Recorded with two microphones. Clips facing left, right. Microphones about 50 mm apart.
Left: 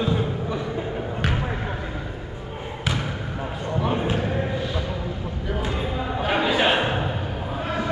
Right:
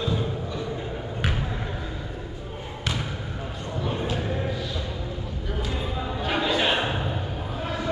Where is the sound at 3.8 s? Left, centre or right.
Left.